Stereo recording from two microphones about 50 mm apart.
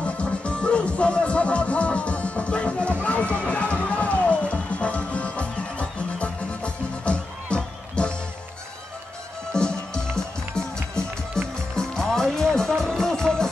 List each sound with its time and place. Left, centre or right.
0.0 s music: left
9.5 s run: centre
11.4 s music: centre